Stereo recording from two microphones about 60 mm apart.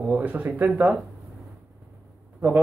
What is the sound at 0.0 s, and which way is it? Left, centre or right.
Speech, right.